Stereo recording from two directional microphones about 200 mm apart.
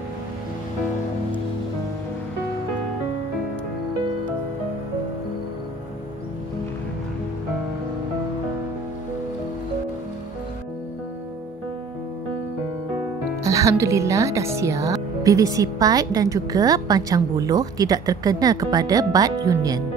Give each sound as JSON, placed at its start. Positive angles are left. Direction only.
{"t": 13.4, "sound": "a woman's voice", "side_deg": -15}